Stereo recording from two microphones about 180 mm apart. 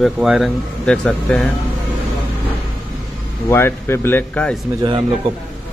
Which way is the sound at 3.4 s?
15° left (ahead or behind).